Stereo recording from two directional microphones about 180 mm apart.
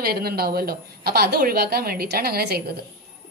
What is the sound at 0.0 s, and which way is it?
A woman's voice, 60° right (ahead or behind).